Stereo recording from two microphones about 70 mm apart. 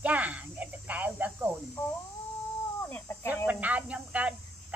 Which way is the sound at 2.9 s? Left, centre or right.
Left.